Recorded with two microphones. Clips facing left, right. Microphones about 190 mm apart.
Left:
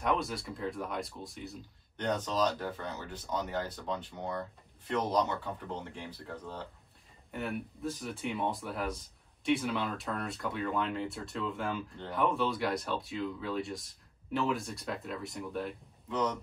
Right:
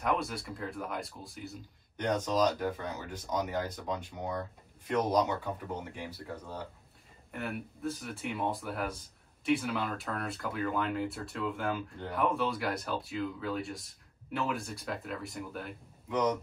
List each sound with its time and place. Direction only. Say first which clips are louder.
0.0 s speech: even; centre (ahead or behind)
2.0 s speech: right 2 dB; 15° right (ahead or behind)
16.1 s speech: right 3 dB; 15° right (ahead or behind)